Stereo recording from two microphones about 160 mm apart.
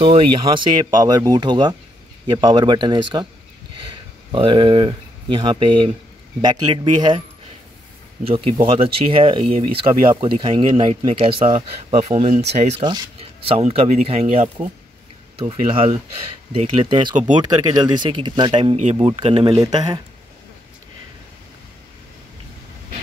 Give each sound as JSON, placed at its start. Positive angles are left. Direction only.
{"t": 0.0, "sound": "speech", "side_deg": -30}
{"t": 4.3, "sound": "speech", "side_deg": -30}
{"t": 8.3, "sound": "speech", "side_deg": -35}
{"t": 19.6, "sound": "speech", "side_deg": -25}